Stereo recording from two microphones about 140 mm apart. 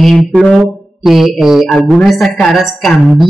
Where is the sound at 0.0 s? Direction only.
Centre (ahead or behind).